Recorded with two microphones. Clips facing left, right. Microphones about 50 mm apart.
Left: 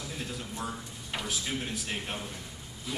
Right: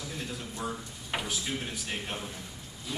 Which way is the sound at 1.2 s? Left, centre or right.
Centre.